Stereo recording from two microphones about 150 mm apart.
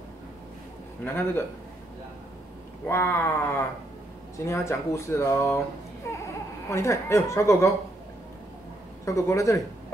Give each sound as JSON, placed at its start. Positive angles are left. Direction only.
{"t": 1.0, "sound": "speech", "side_deg": 15}
{"t": 2.9, "sound": "speech", "side_deg": 15}
{"t": 6.0, "sound": "a sound", "side_deg": 20}
{"t": 6.7, "sound": "speech", "side_deg": 20}
{"t": 9.0, "sound": "speech", "side_deg": 20}